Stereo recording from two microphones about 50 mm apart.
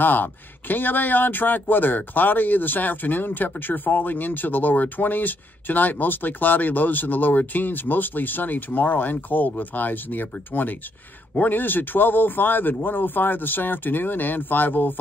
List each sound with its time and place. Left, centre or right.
0.0 s speech: left